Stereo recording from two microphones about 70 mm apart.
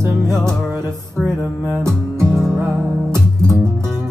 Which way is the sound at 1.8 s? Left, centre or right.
Right.